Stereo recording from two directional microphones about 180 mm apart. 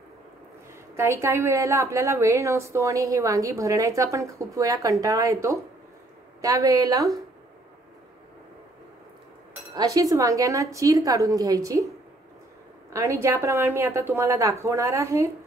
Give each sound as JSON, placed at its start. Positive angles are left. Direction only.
{"t": 0.9, "sound": "a woman's voice", "side_deg": -15}
{"t": 9.8, "sound": "a woman's voice", "side_deg": -20}
{"t": 12.9, "sound": "a woman's voice", "side_deg": -15}